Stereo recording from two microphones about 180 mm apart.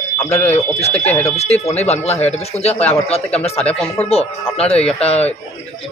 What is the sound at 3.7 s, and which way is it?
Speech, 5° left (ahead or behind).